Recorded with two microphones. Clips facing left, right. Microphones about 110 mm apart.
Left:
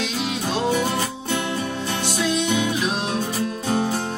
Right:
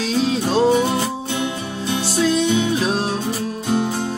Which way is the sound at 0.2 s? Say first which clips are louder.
Right 8 dB; 35° right (ahead or behind).